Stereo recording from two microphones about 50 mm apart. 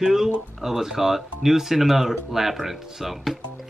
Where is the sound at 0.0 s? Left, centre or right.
Centre.